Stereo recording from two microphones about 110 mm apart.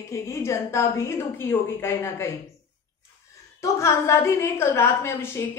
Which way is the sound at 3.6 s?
25° left (ahead or behind).